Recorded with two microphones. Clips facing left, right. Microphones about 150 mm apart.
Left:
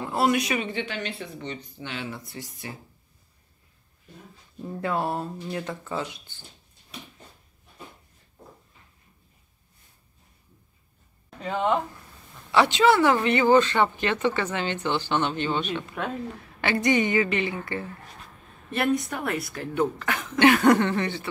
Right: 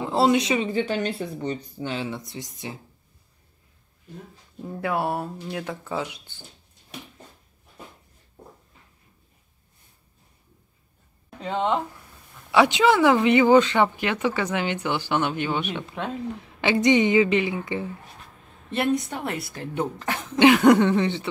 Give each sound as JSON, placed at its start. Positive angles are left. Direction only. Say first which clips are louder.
{"t": 0.1, "sound": "speech", "louder": "right 3 dB", "side_deg": -25}
{"t": 2.0, "sound": "speech", "louder": "right 4 dB", "side_deg": -20}
{"t": 4.8, "sound": "speech", "louder": "right 2 dB", "side_deg": -10}
{"t": 11.4, "sound": "speech", "louder": "even", "side_deg": -20}
{"t": 18.7, "sound": "speech", "louder": "right 1 dB", "side_deg": -25}
{"t": 20.3, "sound": "speech", "louder": "right 3 dB", "side_deg": -15}